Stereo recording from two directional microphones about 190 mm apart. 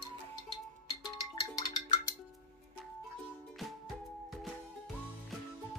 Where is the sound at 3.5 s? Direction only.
Centre (ahead or behind).